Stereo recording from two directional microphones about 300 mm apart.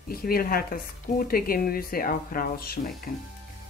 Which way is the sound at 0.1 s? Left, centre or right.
Left.